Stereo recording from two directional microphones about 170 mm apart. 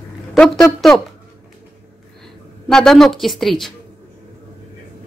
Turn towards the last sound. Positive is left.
turn(degrees=0)  # may be behind; listen again after turning